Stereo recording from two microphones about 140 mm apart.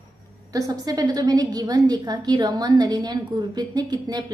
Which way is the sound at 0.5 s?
25° right (ahead or behind).